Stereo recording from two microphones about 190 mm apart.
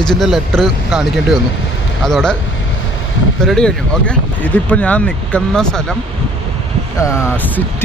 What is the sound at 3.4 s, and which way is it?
Speech, 5° left (ahead or behind).